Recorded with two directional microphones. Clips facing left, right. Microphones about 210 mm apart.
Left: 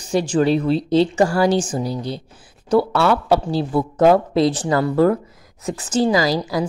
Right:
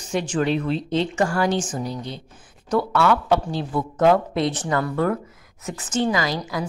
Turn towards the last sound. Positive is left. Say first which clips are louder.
# left 6 dB
turn(degrees=35)  # may be behind; listen again after turning